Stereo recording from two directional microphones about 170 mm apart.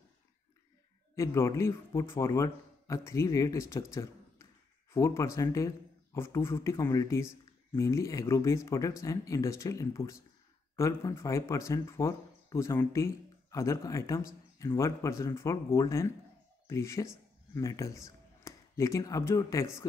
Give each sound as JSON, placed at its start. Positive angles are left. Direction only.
{"t": 1.1, "sound": "speech", "side_deg": 15}
{"t": 3.9, "sound": "a sound", "side_deg": 15}
{"t": 4.9, "sound": "speech", "side_deg": 15}